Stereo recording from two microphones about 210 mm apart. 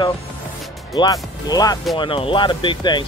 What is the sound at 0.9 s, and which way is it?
Speech, 15° left (ahead or behind).